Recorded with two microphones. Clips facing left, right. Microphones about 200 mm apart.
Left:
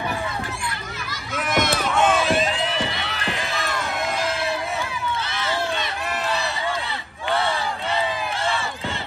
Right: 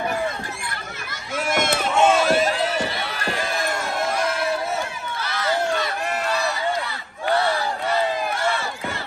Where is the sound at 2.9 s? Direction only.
20° left (ahead or behind).